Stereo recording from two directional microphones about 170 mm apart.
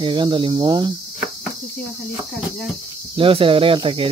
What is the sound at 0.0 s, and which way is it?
Speech, 30° right (ahead or behind).